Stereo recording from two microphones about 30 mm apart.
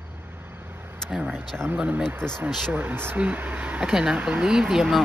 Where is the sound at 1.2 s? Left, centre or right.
Right.